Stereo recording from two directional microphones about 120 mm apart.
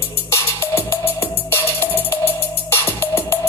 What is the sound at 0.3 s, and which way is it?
Music, 25° left (ahead or behind).